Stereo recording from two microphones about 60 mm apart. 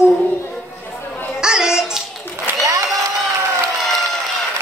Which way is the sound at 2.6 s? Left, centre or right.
Right.